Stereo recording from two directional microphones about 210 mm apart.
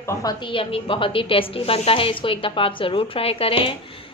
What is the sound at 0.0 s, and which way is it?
A woman's voice, 15° left (ahead or behind).